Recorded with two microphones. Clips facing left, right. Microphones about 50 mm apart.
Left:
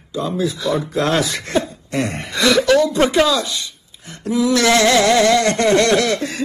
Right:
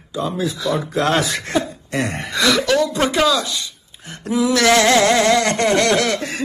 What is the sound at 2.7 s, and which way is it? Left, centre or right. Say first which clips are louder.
Speech: left 3 dB; left.